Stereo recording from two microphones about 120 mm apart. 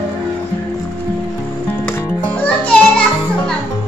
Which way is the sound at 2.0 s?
10° left (ahead or behind).